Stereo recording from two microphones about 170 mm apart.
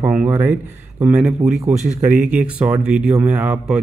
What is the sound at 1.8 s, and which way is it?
Speech, 50° right (ahead or behind).